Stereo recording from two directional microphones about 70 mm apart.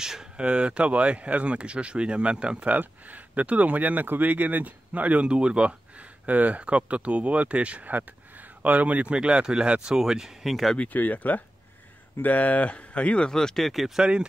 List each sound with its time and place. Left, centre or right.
0.0 s speech: centre
10.8 s speech: left; by 14.2 s centre